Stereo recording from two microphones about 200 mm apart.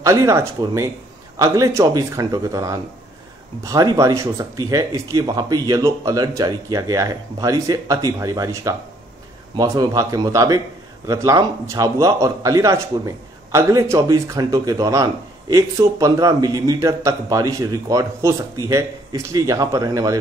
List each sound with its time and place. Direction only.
0.0 s a man's voice: 15° right (ahead or behind)